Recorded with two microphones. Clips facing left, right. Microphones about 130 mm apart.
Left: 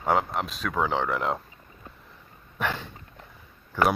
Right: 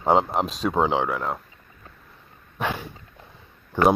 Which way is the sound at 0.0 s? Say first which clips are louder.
Right 5 dB; 25° right (ahead or behind).